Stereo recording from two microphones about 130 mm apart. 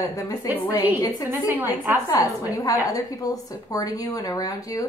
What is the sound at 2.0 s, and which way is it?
A woman's voice, 30° left (ahead or behind).